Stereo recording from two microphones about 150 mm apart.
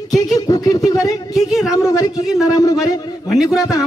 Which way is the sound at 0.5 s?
25° left (ahead or behind).